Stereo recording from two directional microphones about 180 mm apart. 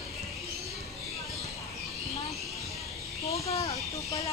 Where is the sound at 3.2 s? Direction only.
35° left (ahead or behind).